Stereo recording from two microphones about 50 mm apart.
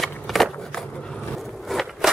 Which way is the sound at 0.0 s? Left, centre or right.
Centre.